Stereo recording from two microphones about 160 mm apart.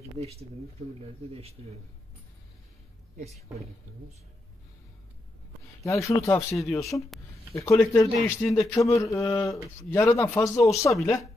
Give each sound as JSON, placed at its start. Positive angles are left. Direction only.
{"t": 0.2, "sound": "speech", "side_deg": -40}
{"t": 5.9, "sound": "speech", "side_deg": 20}